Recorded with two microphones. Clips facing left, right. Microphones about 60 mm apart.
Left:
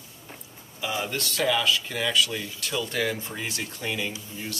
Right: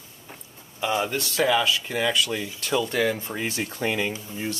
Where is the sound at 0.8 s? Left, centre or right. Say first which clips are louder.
Right 4 dB; centre.